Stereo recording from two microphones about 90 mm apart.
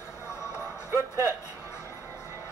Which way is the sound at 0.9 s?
35° right (ahead or behind).